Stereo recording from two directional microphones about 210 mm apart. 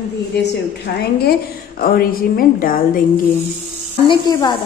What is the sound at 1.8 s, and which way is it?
A woman's voice, 45° left (ahead or behind).